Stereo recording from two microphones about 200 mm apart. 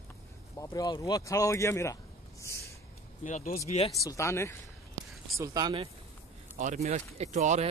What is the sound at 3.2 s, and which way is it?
Speech, 35° left (ahead or behind).